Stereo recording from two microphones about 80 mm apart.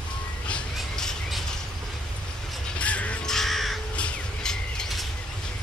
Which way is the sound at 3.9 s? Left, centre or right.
Centre.